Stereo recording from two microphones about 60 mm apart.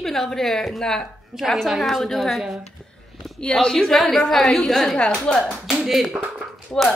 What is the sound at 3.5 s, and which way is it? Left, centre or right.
A woman's voice, centre.